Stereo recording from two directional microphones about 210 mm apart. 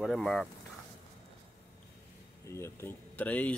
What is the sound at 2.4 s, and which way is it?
Speech, 10° left (ahead or behind).